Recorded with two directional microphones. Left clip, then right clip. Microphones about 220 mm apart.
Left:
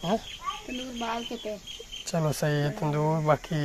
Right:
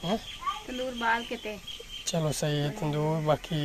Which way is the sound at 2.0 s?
5° left (ahead or behind).